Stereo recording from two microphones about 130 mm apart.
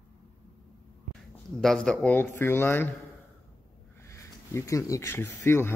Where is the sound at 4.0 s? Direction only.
20° left (ahead or behind).